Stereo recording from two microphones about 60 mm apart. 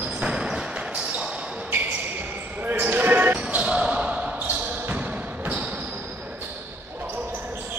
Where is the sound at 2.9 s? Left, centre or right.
Right.